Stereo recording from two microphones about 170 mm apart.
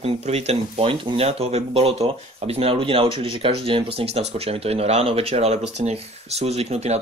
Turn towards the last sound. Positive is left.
turn(degrees=-40)  # may be behind; listen again after turning